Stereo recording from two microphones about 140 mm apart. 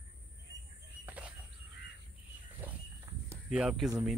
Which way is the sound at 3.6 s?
5° right (ahead or behind).